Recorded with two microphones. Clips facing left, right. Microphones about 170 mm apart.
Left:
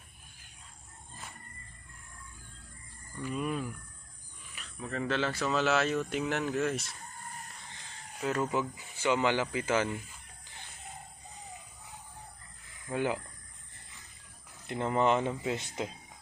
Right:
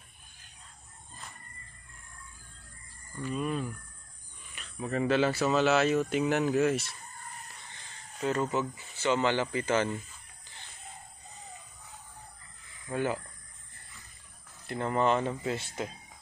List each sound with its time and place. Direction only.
3.2 s speech: 10° left (ahead or behind)
4.7 s speech: 15° right (ahead or behind)
8.2 s speech: 5° left (ahead or behind)
12.9 s speech: 15° left (ahead or behind)
14.7 s speech: 20° left (ahead or behind)